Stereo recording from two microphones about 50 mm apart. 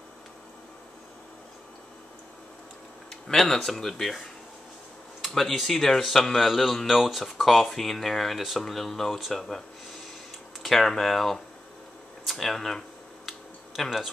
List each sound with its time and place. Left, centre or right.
3.1 s speech: centre
5.3 s speech: centre
10.6 s speech: centre
12.3 s a sound: centre